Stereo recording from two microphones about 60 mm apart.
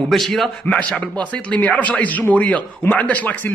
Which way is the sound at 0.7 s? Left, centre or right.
Centre.